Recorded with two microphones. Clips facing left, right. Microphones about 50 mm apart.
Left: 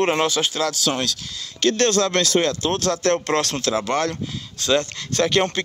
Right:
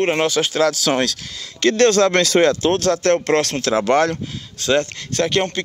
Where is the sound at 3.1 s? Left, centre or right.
Right.